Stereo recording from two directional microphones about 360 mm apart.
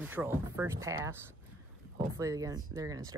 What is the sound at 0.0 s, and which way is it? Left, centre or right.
Speech, centre.